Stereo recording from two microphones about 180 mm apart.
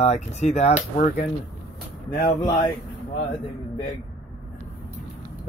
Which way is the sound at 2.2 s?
25° left (ahead or behind).